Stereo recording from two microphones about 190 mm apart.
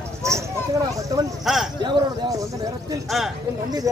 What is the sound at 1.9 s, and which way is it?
Speech, 20° right (ahead or behind).